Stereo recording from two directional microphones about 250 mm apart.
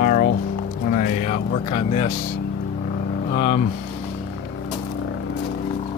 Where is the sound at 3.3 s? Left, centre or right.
Left.